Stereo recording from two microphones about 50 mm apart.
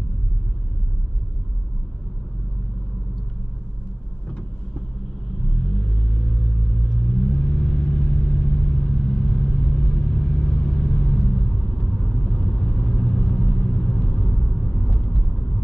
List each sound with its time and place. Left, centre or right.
7.2 s vehicle: centre